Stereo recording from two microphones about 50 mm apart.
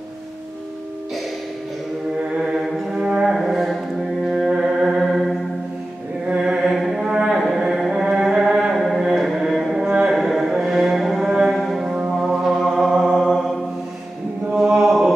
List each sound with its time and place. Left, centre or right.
2.3 s mantra: centre
3.3 s music: centre
6.2 s mantra: centre
6.7 s mantra: centre
7.3 s music: centre
8.7 s a sound: centre
9.0 s music: centre
9.4 s a sound: centre
10.1 s mantra: centre
11.5 s music: centre
14.5 s chant: centre